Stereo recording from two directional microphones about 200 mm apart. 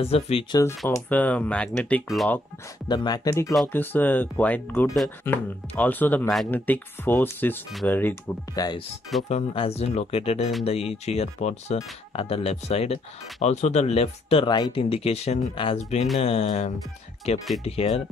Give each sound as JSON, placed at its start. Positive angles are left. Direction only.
{"t": 0.0, "sound": "speech", "side_deg": 30}
{"t": 0.6, "sound": "speech", "side_deg": 15}
{"t": 2.9, "sound": "speech", "side_deg": 20}